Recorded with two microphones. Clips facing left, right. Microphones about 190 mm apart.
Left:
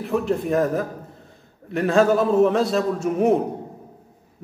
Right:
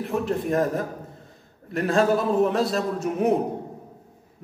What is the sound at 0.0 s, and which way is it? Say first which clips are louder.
A man's voice: left 3 dB; centre (ahead or behind).